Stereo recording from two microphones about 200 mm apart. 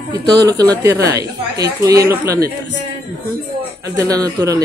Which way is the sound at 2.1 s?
15° right (ahead or behind).